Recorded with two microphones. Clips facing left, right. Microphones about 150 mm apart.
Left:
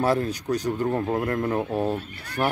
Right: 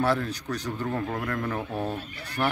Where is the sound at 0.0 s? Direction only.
40° left (ahead or behind).